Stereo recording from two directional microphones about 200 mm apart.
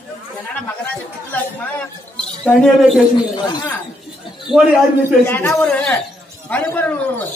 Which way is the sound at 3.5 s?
20° left (ahead or behind).